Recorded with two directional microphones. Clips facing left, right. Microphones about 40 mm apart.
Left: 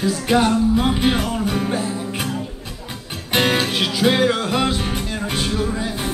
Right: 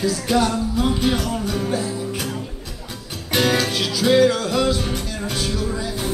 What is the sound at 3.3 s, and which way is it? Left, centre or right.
Music, left.